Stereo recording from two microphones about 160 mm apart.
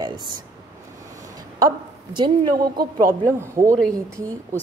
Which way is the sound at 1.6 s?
30° right (ahead or behind).